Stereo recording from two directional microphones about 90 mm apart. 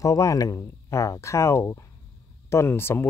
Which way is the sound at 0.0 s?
40° left (ahead or behind).